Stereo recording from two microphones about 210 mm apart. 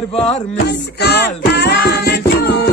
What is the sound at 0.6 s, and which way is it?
Music, 55° left (ahead or behind).